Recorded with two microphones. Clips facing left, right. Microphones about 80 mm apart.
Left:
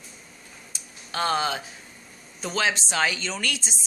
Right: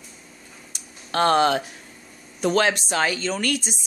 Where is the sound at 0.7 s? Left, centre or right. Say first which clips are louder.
Right 7 dB; right.